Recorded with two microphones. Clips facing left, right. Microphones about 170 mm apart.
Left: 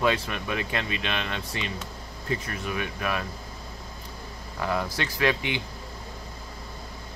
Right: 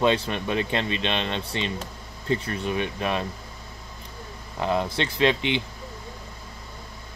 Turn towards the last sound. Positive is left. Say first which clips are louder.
# right 4 dB
turn(degrees=-25)  # may be behind; listen again after turning